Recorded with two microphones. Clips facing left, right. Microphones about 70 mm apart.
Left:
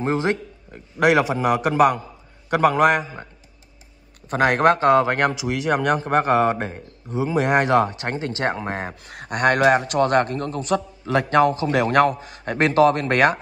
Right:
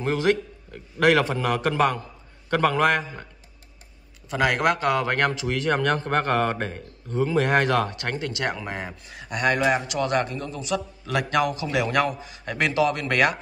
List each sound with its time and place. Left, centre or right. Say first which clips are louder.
0.0 s a man's voice: left 1 dB; left
4.3 s speech: left 5 dB; left
11.1 s a man's voice: left 6 dB; left